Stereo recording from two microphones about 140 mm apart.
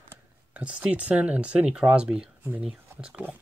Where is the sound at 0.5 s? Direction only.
10° right (ahead or behind).